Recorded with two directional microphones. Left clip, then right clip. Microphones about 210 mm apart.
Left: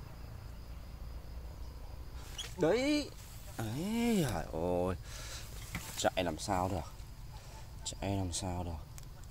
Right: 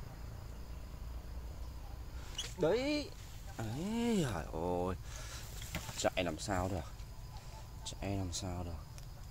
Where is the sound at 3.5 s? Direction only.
35° left (ahead or behind).